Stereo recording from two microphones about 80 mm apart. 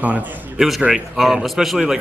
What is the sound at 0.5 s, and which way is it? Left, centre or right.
Speech, centre.